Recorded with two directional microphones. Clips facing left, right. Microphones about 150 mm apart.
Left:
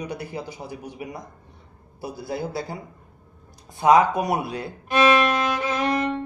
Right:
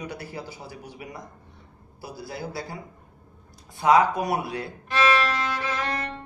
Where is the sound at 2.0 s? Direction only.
25° left (ahead or behind).